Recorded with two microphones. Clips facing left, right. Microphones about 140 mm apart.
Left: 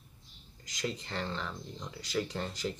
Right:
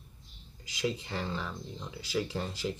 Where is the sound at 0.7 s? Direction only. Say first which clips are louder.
Right 4 dB; 5° right (ahead or behind).